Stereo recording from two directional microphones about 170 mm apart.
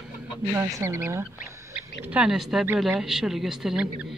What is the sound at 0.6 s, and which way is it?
Speech, 15° right (ahead or behind).